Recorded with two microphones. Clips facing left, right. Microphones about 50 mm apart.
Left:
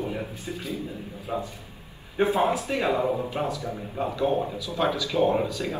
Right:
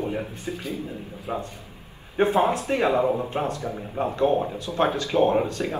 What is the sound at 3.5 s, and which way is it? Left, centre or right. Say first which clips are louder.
Speech: right 2 dB; right.